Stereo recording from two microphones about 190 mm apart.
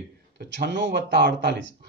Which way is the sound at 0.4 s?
65° right (ahead or behind).